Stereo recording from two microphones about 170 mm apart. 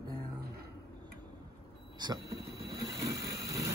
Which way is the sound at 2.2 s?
70° right (ahead or behind).